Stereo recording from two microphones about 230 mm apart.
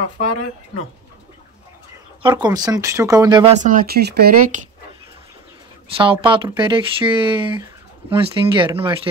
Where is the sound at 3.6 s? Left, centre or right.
Right.